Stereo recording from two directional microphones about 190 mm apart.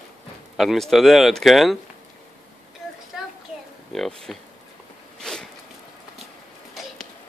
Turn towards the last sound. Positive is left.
turn(degrees=5)  # may be behind; listen again after turning